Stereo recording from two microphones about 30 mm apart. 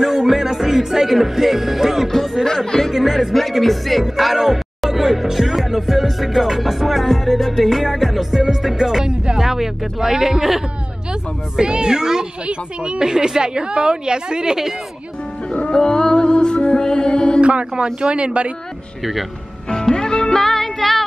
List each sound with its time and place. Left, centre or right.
0.3 s music: centre
2.4 s speech: centre
2.9 s music: centre
4.0 s music: centre
8.4 s music: centre
9.4 s speech: centre
11.5 s a woman's voice: right
12.4 s speech: right
13.0 s a woman's voice: right
15.7 s music: left
17.4 s speech: right
19.7 s music: left